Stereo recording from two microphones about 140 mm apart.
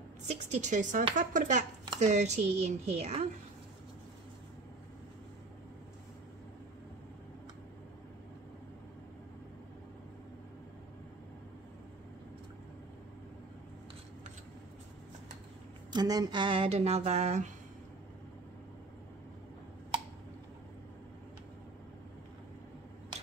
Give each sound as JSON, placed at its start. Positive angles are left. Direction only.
{"t": 0.3, "sound": "a woman's voice", "side_deg": -55}
{"t": 2.0, "sound": "speech", "side_deg": -55}
{"t": 15.9, "sound": "speech", "side_deg": -30}